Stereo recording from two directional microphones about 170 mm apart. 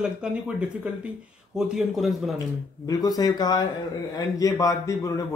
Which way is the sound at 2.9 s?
20° left (ahead or behind).